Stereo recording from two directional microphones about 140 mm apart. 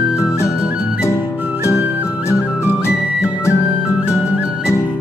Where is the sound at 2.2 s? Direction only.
20° left (ahead or behind).